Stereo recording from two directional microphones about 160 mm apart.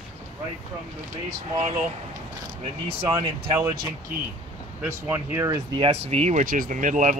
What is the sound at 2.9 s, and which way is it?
Speech, 35° right (ahead or behind).